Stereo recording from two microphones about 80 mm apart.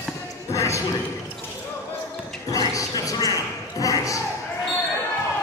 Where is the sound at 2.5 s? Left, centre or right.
Left.